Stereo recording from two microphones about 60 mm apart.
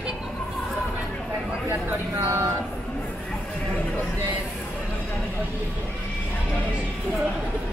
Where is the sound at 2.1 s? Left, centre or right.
Right.